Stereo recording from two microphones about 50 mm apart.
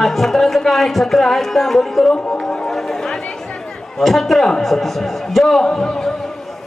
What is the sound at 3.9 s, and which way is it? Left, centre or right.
A woman's voice, centre.